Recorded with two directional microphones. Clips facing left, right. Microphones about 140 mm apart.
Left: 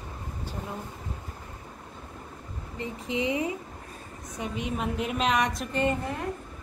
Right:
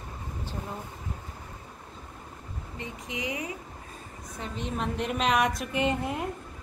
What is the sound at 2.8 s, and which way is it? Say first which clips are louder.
Speech: left 6 dB; 30° left (ahead or behind).